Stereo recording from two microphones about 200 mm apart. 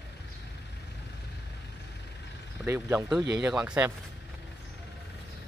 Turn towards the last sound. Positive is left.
turn(degrees=-10)  # may be behind; listen again after turning